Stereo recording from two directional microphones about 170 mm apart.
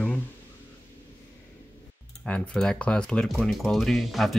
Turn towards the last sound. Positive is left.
turn(degrees=0)  # may be behind; listen again after turning